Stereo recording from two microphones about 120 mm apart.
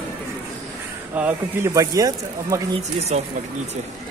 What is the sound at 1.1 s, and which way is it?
Speech, 15° right (ahead or behind).